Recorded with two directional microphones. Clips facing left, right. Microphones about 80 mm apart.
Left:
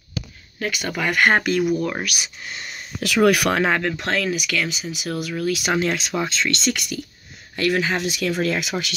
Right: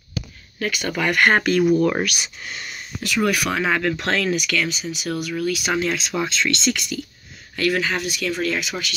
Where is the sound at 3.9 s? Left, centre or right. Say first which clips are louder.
Right 2 dB; centre.